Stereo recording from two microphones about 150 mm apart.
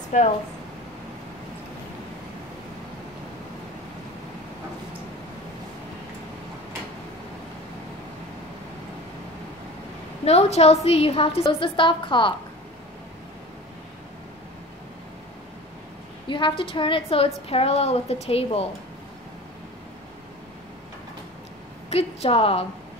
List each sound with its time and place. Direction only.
0.1 s speech: 55° left (ahead or behind)
10.2 s a woman's voice: 45° left (ahead or behind)
16.3 s a woman's voice: 35° left (ahead or behind)
21.8 s a woman's voice: 40° left (ahead or behind)